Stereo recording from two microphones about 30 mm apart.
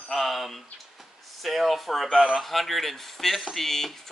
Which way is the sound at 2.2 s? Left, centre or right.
Centre.